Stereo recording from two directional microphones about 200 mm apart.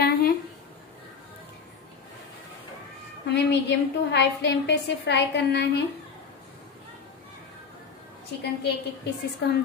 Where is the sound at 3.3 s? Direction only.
60° left (ahead or behind).